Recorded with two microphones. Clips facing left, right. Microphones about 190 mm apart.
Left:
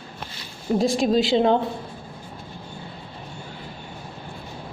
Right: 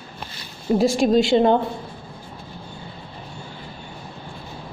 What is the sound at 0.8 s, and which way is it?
Speech, centre (ahead or behind).